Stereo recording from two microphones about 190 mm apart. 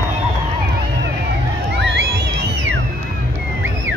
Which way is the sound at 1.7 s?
65° right (ahead or behind).